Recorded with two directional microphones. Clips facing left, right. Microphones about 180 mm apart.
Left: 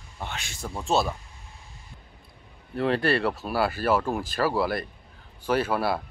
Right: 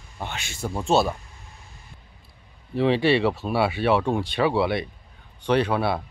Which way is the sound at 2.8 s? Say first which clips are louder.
Right 4 dB; centre (ahead or behind).